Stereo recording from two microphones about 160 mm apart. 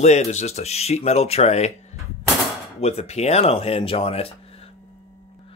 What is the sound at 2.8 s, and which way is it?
Speech, 40° left (ahead or behind).